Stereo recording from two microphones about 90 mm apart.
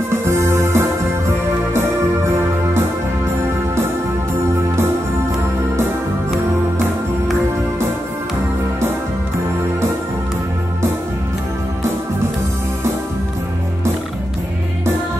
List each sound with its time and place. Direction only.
0.1 s music: 30° right (ahead or behind)